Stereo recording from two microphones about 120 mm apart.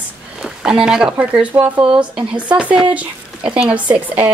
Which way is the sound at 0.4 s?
5° right (ahead or behind).